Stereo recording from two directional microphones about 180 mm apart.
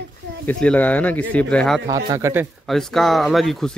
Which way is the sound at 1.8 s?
20° right (ahead or behind).